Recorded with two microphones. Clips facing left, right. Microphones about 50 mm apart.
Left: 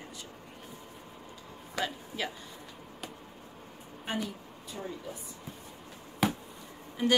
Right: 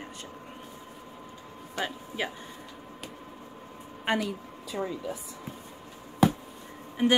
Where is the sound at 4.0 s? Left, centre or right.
Right.